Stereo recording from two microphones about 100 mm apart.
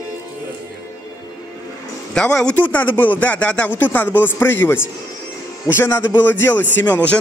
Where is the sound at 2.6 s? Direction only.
20° left (ahead or behind).